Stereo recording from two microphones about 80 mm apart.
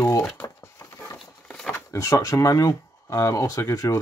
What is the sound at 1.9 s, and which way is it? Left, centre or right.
Speech, left.